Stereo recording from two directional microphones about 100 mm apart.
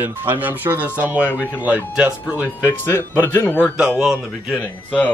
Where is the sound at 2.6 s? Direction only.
25° left (ahead or behind).